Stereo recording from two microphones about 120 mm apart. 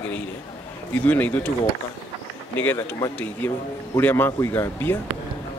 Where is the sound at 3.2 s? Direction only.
15° left (ahead or behind).